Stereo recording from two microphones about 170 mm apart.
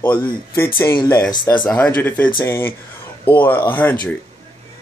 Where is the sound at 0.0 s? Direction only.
10° left (ahead or behind).